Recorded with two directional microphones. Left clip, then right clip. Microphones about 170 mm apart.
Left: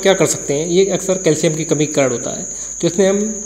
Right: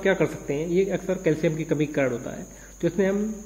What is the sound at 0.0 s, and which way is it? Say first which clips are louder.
Speech: left 9 dB; 15° left (ahead or behind).